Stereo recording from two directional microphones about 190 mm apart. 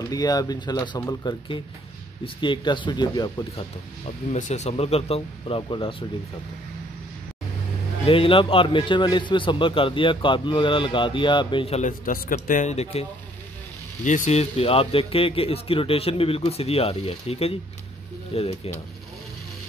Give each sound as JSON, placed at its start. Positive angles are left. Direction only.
{"t": 0.1, "sound": "a man's voice", "side_deg": 20}
{"t": 4.3, "sound": "speech", "side_deg": 35}
{"t": 8.1, "sound": "a man's voice", "side_deg": 25}
{"t": 12.0, "sound": "speech", "side_deg": 50}
{"t": 14.0, "sound": "speech", "side_deg": 40}